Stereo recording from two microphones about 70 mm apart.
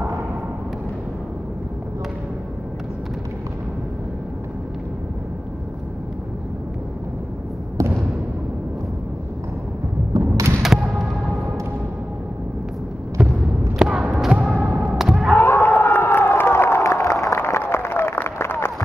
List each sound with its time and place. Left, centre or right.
10.3 s thump: right
11.0 s music: centre
13.2 s basketball bounce: centre
13.7 s a sound: centre
15.3 s crowd: left